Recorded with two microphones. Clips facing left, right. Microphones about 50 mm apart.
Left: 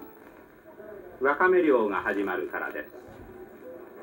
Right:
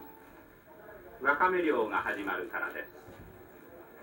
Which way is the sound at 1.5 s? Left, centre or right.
Centre.